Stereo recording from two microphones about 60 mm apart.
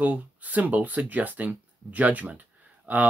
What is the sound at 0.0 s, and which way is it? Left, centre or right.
Speech, right.